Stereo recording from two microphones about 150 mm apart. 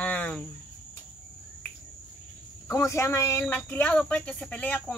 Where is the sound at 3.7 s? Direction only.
10° left (ahead or behind).